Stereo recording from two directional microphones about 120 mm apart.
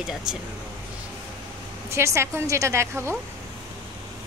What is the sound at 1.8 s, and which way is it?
A woman's voice, 20° right (ahead or behind).